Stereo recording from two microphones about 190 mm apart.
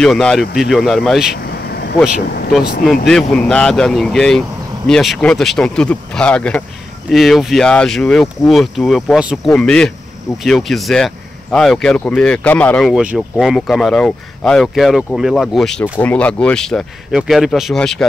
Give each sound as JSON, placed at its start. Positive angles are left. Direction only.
{"t": 0.0, "sound": "speech", "side_deg": 5}
{"t": 1.7, "sound": "vehicle", "side_deg": 55}
{"t": 2.0, "sound": "speech", "side_deg": 55}
{"t": 3.1, "sound": "speech", "side_deg": 5}